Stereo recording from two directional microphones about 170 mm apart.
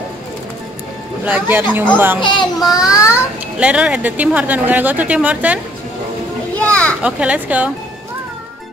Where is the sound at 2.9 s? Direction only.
15° left (ahead or behind).